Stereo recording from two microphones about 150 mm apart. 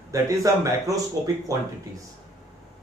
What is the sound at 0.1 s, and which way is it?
Speech, 20° right (ahead or behind).